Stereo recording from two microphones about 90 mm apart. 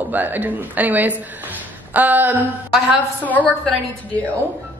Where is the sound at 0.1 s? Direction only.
20° right (ahead or behind).